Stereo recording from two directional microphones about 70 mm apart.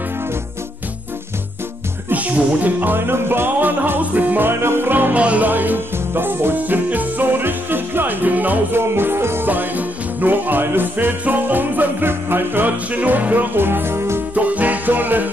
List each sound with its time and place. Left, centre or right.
2.0 s music: right
14.3 s music: right